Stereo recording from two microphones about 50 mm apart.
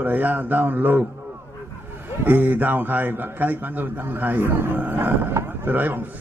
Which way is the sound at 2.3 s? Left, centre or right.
Right.